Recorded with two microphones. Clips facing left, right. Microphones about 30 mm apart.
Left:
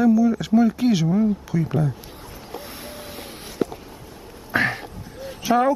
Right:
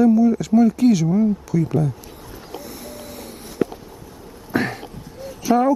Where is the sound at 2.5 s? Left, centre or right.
Left.